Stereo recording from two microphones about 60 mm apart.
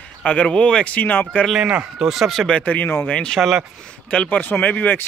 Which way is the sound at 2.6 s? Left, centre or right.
Left.